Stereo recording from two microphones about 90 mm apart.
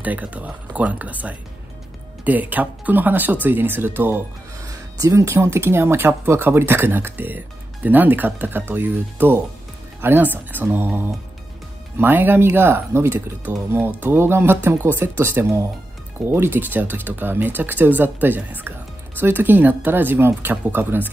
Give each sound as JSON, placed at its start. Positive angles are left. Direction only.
{"t": 0.0, "sound": "speech", "side_deg": -15}
{"t": 4.6, "sound": "speech", "side_deg": -40}